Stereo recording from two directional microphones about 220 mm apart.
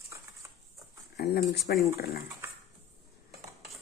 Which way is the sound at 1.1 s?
45° left (ahead or behind).